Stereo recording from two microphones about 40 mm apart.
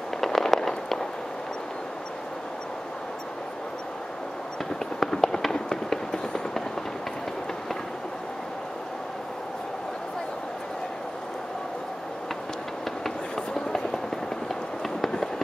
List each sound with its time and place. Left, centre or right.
0.2 s fireworks: centre
4.7 s fireworks: centre
13.5 s vehicle: centre